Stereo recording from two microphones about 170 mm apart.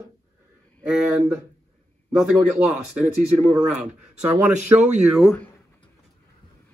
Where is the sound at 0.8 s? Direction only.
5° right (ahead or behind).